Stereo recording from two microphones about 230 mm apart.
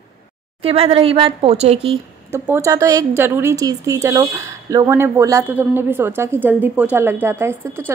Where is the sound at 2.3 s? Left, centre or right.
Centre.